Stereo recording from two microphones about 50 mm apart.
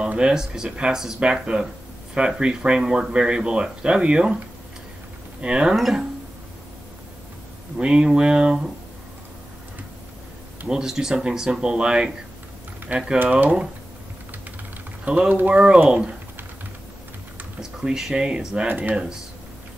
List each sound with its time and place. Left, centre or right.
0.2 s speech: centre
0.7 s speech: right
5.4 s speech: centre
5.8 s speech: centre
7.7 s speech: centre
10.7 s speech: centre
15.0 s speech: right
15.5 s speech: centre
17.6 s speech: centre
18.7 s speech: right